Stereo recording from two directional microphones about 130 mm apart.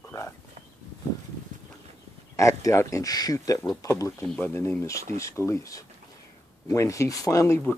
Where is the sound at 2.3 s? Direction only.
25° left (ahead or behind).